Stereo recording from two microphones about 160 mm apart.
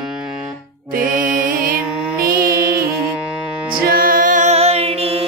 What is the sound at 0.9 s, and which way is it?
Mantra, 60° right (ahead or behind).